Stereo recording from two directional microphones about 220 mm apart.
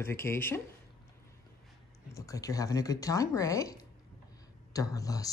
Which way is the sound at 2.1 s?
15° left (ahead or behind).